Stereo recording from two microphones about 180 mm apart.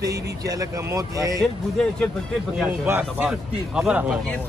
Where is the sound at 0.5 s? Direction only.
15° right (ahead or behind).